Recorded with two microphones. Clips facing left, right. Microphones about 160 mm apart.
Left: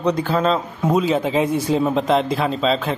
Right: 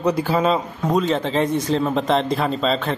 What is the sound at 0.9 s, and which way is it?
A man's voice, 5° left (ahead or behind).